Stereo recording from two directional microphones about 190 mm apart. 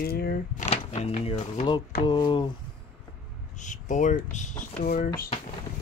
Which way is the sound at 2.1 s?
25° left (ahead or behind).